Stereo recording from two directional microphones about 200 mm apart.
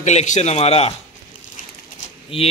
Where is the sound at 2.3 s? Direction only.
30° left (ahead or behind).